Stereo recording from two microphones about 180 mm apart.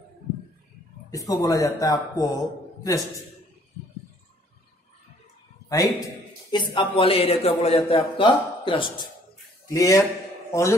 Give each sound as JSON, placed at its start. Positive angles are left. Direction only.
{"t": 1.1, "sound": "a man's voice", "side_deg": 20}
{"t": 5.7, "sound": "a man's voice", "side_deg": 20}